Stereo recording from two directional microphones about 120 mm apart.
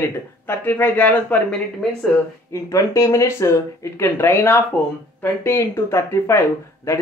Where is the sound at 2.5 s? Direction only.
25° left (ahead or behind).